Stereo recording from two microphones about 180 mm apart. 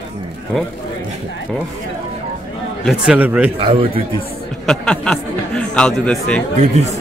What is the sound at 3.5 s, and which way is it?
Speech, 30° right (ahead or behind).